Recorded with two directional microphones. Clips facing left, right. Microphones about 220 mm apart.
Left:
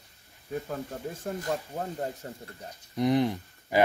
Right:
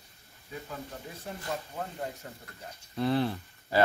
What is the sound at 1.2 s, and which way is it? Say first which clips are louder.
Speech: left 4 dB; 40° left (ahead or behind).